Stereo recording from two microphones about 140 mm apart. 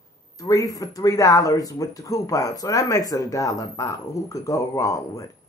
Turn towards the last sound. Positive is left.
turn(degrees=20)  # may be behind; listen again after turning